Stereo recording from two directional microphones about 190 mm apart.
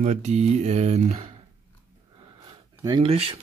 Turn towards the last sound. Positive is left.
turn(degrees=-30)  # may be behind; listen again after turning